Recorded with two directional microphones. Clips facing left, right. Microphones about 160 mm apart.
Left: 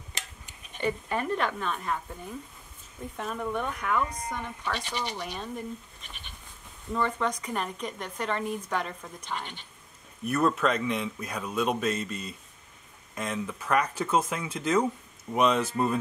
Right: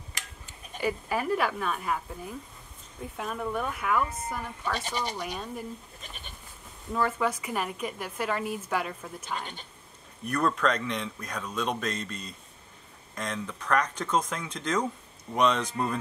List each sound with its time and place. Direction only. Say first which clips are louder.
0.7 s speech: even; 5° right (ahead or behind)
6.9 s a woman's voice: right 1 dB; 5° right (ahead or behind)
10.2 s speech: left 1 dB; 5° left (ahead or behind)